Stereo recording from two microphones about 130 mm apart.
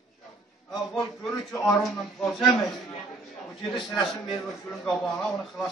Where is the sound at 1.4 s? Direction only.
5° left (ahead or behind).